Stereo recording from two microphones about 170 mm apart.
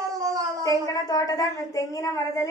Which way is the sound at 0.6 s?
20° left (ahead or behind).